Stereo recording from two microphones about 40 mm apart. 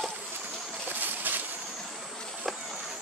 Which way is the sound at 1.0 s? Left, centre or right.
Right.